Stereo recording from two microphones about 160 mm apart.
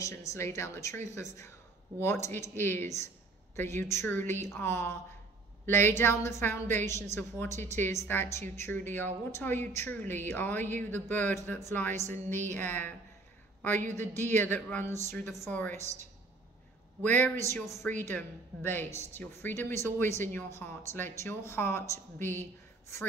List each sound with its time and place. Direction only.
0.0 s speech: 20° left (ahead or behind)
2.5 s a woman's voice: 15° left (ahead or behind)
17.0 s speech: 10° left (ahead or behind)